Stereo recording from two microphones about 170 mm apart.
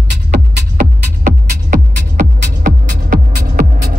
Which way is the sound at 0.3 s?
50° right (ahead or behind).